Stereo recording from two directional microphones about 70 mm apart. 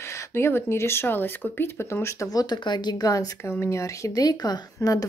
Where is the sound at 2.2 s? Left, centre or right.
Left.